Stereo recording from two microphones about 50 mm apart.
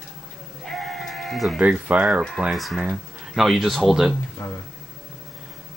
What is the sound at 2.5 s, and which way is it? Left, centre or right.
Speech, centre.